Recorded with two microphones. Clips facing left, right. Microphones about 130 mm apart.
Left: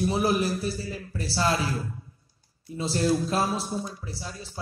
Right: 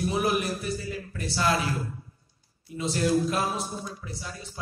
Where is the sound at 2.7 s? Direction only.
30° left (ahead or behind).